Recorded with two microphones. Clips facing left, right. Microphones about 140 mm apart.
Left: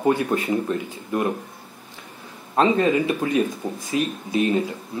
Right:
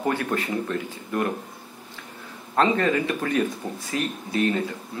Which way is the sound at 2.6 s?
20° left (ahead or behind).